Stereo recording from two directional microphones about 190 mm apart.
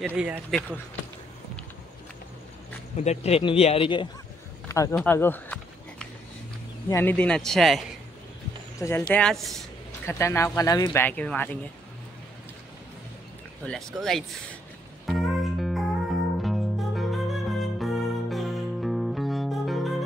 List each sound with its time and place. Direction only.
0.0 s speech: 10° right (ahead or behind)
3.0 s speech: 35° left (ahead or behind)
4.6 s a sound: 15° left (ahead or behind)
6.9 s speech: 10° left (ahead or behind)
8.7 s speech: 15° left (ahead or behind)
9.1 s speech: 5° left (ahead or behind)
10.0 s speech: 15° left (ahead or behind)
13.7 s speech: centre (ahead or behind)
15.0 s music: centre (ahead or behind)